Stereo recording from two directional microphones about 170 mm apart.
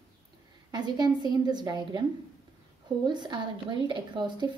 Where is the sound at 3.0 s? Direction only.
25° right (ahead or behind).